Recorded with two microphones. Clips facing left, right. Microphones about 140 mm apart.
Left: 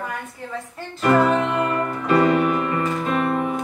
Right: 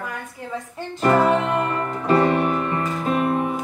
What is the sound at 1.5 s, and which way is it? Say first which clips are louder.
Music: left 1 dB; 30° right (ahead or behind).